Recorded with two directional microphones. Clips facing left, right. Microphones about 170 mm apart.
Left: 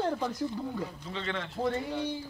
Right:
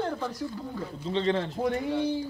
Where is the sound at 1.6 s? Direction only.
15° right (ahead or behind).